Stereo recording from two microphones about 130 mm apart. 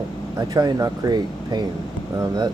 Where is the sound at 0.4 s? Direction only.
30° right (ahead or behind).